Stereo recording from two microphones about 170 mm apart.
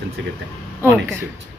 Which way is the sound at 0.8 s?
15° right (ahead or behind).